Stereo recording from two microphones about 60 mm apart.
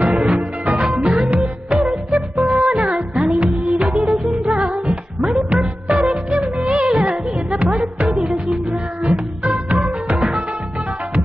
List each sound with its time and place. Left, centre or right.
0.0 s music: centre
5.5 s music of bollywood: centre
6.6 s music: centre
6.9 s music: centre
9.1 s music: centre
10.1 s music: centre